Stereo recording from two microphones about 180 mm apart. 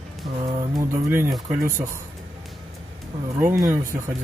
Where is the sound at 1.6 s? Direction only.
15° right (ahead or behind).